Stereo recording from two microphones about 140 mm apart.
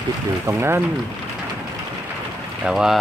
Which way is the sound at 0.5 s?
15° right (ahead or behind).